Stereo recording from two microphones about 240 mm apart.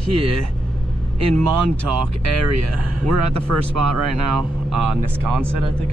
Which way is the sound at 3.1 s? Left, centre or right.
Right.